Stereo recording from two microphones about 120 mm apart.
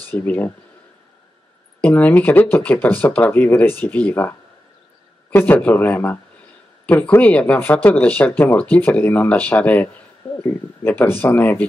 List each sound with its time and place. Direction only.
0.0 s speech: 20° left (ahead or behind)
1.8 s speech: 15° left (ahead or behind)